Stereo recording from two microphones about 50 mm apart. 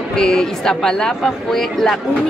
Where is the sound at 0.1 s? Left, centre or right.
Centre.